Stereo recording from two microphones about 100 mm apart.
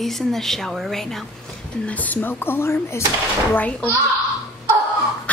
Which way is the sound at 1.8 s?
15° left (ahead or behind).